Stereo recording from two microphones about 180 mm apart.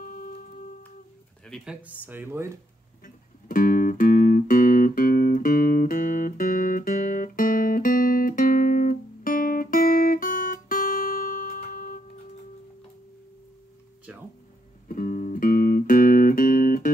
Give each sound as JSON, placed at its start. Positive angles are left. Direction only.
{"t": 0.0, "sound": "music", "side_deg": 50}
{"t": 1.4, "sound": "speech", "side_deg": 0}
{"t": 3.0, "sound": "music", "side_deg": 50}
{"t": 14.9, "sound": "music", "side_deg": 50}